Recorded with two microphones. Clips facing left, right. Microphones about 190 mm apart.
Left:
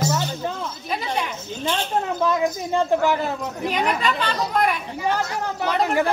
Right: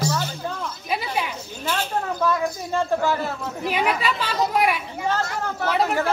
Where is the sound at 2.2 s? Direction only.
20° left (ahead or behind).